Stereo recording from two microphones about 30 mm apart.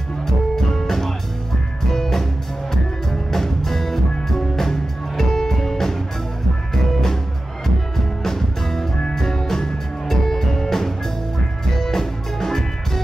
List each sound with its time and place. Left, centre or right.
0.6 s music: centre
8.2 s music: centre